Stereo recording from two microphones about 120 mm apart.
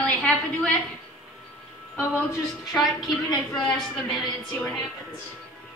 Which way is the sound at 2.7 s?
Centre (ahead or behind).